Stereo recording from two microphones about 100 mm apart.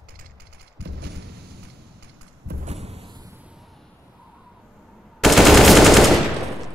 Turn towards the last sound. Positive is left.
turn(degrees=0)  # may be behind; listen again after turning